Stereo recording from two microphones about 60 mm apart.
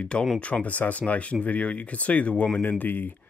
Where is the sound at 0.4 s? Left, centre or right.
Left.